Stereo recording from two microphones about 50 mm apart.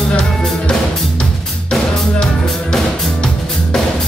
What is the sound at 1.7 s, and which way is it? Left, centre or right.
Music, centre.